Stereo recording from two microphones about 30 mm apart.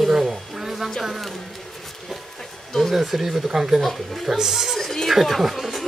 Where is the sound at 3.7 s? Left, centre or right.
Centre.